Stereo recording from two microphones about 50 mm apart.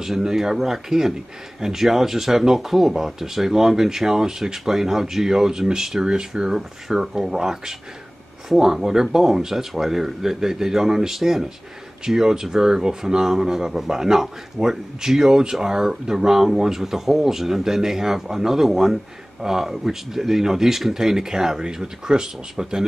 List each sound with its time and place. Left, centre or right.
0.0 s speech: centre